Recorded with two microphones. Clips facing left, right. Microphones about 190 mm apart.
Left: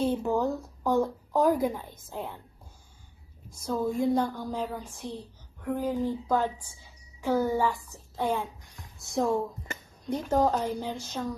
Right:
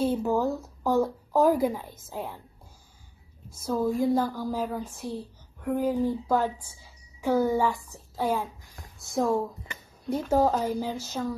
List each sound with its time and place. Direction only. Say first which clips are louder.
0.0 s speech: right 1 dB; 5° right (ahead or behind)
3.5 s a woman's voice: right 2 dB; 5° right (ahead or behind)
7.9 s a child's voice: right 1 dB; centre (ahead or behind)
9.7 s a sound: left 4 dB; 45° left (ahead or behind)
10.0 s speech: right 2 dB; 10° right (ahead or behind)